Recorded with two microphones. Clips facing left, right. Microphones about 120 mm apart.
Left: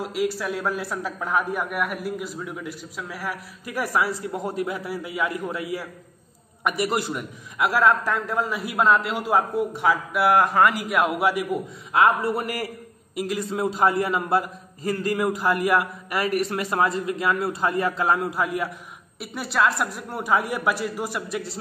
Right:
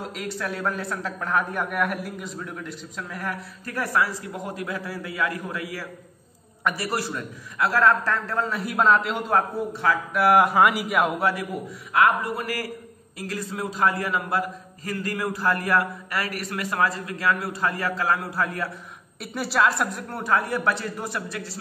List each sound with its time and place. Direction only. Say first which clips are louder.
0.0 s a man's voice: left 5 dB; 5° left (ahead or behind)
9.7 s a man's voice: left 2 dB; 15° left (ahead or behind)
10.1 s a man's voice: right 2 dB; centre (ahead or behind)
11.9 s a man's voice: left 1 dB; 25° left (ahead or behind)
19.1 s a man's voice: right 1 dB; centre (ahead or behind)
20.1 s a man's voice: left 2 dB; 10° left (ahead or behind)